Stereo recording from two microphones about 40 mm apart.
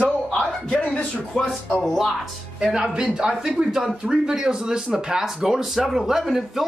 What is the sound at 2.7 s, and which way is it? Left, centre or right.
Speech, centre.